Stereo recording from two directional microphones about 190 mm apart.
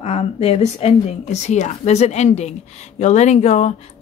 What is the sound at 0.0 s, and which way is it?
A woman's voice, 35° left (ahead or behind).